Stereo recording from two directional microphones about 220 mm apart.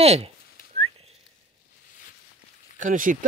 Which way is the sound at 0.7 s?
30° right (ahead or behind).